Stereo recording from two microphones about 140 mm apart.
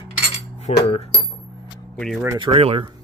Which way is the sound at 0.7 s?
45° left (ahead or behind).